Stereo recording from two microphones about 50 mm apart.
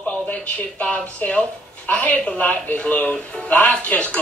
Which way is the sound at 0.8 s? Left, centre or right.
Left.